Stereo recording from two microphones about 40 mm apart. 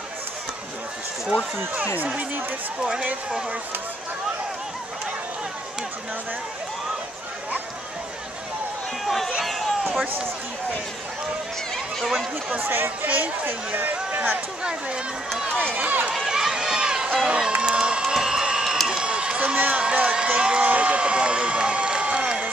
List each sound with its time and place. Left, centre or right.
9.0 s a sound: centre
12.0 s speech: centre
12.5 s speech: right
14.6 s speech: right
15.6 s speech: right
16.3 s run: centre
17.3 s crowd: right
18.9 s run: right
19.4 s speech: right
19.8 s a sound: right